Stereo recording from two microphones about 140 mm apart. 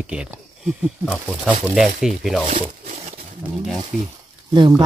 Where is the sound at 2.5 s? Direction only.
65° right (ahead or behind).